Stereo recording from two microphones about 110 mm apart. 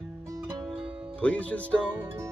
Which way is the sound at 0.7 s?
5° right (ahead or behind).